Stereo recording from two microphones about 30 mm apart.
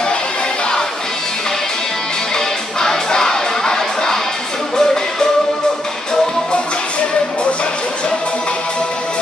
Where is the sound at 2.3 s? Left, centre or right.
Centre.